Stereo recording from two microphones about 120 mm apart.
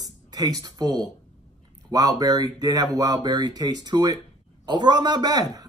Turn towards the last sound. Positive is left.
turn(degrees=-35)  # may be behind; listen again after turning